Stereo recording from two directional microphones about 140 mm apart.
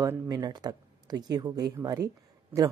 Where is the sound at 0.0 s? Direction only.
25° right (ahead or behind).